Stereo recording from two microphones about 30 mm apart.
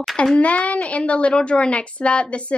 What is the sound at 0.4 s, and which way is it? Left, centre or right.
Speech, left.